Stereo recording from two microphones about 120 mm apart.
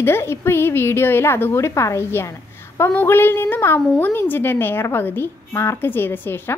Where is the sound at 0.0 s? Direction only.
20° left (ahead or behind).